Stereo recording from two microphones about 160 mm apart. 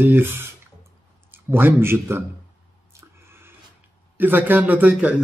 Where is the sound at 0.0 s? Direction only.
15° right (ahead or behind).